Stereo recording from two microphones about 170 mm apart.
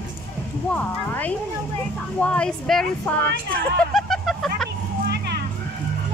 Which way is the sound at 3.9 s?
Centre (ahead or behind).